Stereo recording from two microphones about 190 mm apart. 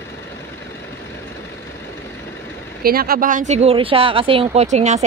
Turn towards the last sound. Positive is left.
turn(degrees=-35)  # may be behind; listen again after turning